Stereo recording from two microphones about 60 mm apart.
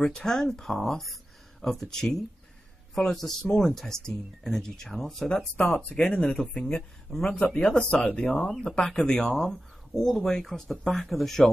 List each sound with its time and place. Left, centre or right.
0.0 s speech: centre
5.8 s speech: centre
7.5 s speech: centre
8.3 s speech: centre